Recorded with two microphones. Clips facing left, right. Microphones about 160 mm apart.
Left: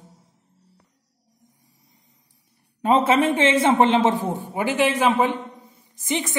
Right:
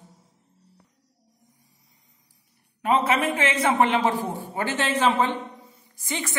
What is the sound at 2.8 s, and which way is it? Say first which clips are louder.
A man's voice: left 4 dB; 25° left (ahead or behind).